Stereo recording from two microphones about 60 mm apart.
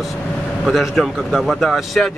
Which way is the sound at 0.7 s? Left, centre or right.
Centre.